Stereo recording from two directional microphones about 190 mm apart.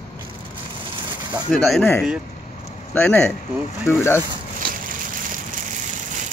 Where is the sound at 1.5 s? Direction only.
Centre (ahead or behind).